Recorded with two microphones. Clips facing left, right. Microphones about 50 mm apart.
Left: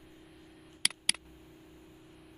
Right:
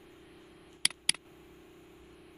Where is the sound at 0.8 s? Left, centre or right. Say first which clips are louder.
Even; centre.